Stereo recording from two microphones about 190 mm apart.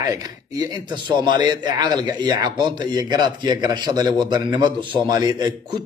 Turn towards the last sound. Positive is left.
turn(degrees=-20)  # may be behind; listen again after turning